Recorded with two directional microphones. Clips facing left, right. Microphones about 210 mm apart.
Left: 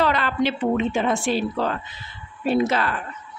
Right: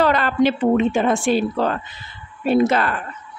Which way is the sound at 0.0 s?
45° right (ahead or behind).